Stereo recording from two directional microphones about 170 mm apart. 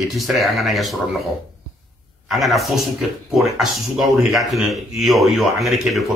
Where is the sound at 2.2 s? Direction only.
Centre (ahead or behind).